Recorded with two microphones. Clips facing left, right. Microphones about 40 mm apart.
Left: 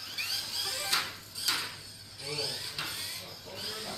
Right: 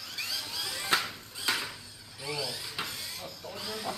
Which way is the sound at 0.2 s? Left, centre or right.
Centre.